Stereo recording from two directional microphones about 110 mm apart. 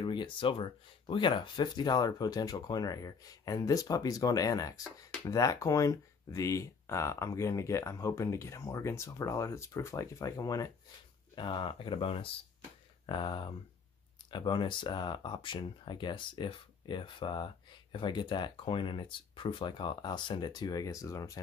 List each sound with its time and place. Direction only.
0.0 s speech: 50° left (ahead or behind)
11.3 s speech: 50° left (ahead or behind); by 21.3 s 30° left (ahead or behind)